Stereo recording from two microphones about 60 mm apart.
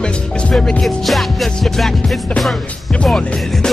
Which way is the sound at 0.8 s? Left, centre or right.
Centre.